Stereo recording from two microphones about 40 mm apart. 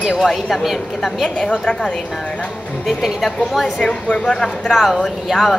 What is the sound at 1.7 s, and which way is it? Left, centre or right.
Speech, left.